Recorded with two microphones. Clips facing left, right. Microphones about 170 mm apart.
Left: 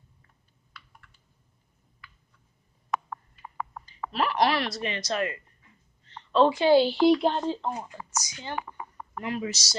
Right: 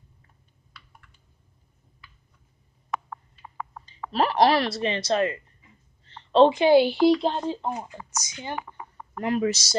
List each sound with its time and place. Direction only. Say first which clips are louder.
3.8 s a woman's voice: right 4 dB; 35° right (ahead or behind); by 7.0 s 15° right (ahead or behind)
7.1 s speech: even; centre (ahead or behind)
7.4 s speech: right 1 dB; 15° right (ahead or behind)
9.4 s speech: right 8 dB; 55° right (ahead or behind)